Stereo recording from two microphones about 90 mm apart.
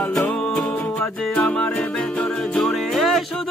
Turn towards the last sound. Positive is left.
turn(degrees=0)  # may be behind; listen again after turning